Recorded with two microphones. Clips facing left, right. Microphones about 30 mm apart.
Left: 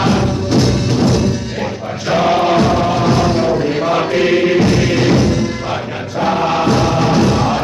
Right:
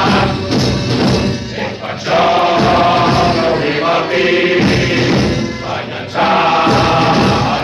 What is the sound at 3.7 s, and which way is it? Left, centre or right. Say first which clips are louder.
Mantra: right 2 dB; right.